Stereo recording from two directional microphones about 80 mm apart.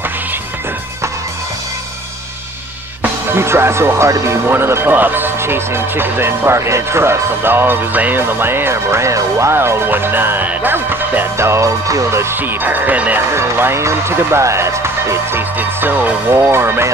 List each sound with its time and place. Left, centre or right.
3.0 s speech: right
13.3 s speech: right